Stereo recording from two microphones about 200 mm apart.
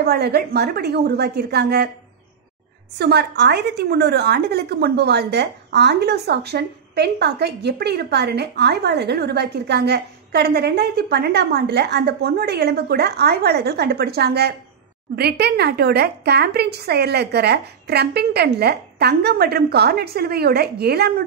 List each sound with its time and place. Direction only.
0.0 s a woman's voice: 55° right (ahead or behind)
3.0 s a woman's voice: 55° right (ahead or behind)